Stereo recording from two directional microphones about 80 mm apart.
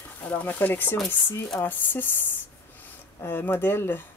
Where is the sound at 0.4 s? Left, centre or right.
Left.